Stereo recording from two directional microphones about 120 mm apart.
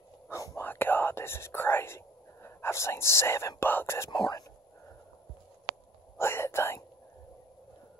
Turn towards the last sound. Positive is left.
turn(degrees=20)  # may be behind; listen again after turning